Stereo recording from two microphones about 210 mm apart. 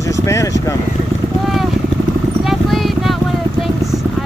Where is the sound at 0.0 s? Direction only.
15° left (ahead or behind).